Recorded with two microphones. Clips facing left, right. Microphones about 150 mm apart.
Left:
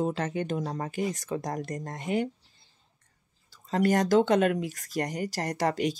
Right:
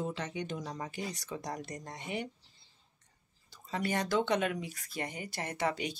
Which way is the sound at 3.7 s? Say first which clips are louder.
Left 9 dB; 45° left (ahead or behind).